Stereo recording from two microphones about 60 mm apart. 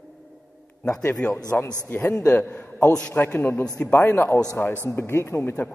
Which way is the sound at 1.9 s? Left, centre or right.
Left.